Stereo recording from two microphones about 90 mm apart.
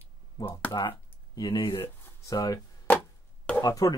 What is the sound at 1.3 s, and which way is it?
Speech, 50° left (ahead or behind).